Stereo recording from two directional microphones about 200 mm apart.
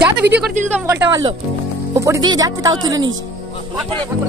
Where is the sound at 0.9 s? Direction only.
15° right (ahead or behind).